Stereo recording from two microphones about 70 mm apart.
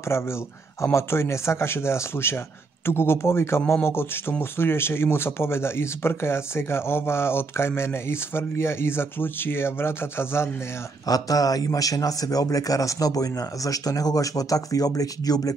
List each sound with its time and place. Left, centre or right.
0.1 s speech: left
11.1 s a man's voice: left